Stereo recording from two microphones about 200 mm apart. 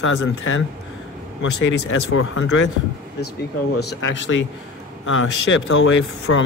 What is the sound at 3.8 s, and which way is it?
Speech, 60° left (ahead or behind).